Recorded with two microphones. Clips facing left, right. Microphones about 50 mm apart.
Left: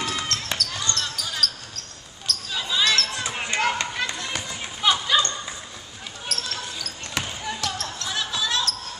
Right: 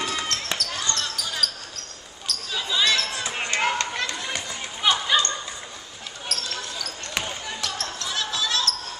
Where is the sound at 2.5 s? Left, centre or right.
Centre.